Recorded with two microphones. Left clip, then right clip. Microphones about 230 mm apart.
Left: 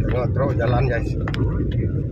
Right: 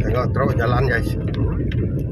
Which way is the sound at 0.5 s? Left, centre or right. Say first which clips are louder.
Right 2 dB; right.